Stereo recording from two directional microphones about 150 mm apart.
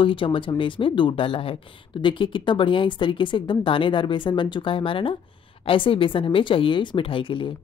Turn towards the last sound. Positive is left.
turn(degrees=35)  # may be behind; listen again after turning